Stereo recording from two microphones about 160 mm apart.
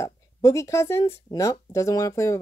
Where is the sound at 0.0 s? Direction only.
20° left (ahead or behind).